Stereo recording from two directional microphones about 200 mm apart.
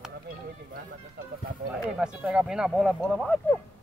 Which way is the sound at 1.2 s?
55° right (ahead or behind).